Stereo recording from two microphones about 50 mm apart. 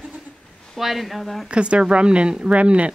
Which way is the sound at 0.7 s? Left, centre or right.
Centre.